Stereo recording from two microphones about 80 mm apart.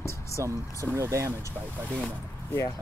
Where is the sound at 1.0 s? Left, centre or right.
Right.